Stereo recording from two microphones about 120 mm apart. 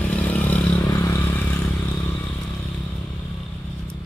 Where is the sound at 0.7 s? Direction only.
30° left (ahead or behind).